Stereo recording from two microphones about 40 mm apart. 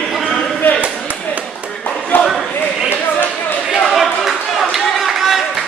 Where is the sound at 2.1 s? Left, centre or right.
Left.